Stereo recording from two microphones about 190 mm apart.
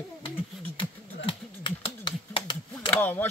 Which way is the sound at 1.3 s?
25° left (ahead or behind).